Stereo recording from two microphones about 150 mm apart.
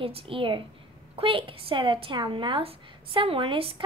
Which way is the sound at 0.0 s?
40° right (ahead or behind).